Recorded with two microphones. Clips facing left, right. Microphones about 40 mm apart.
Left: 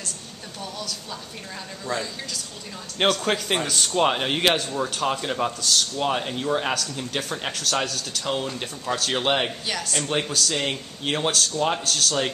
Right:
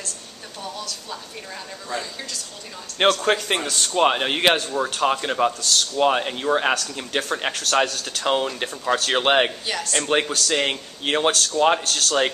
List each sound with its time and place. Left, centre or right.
3.1 s a man's voice: centre
9.7 s a man's voice: centre
10.0 s speech: right